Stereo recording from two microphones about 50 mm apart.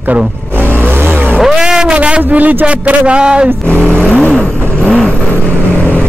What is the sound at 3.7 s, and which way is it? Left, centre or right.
Vehicle, left.